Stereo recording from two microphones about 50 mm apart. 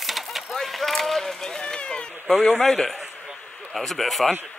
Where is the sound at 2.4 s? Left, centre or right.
Left.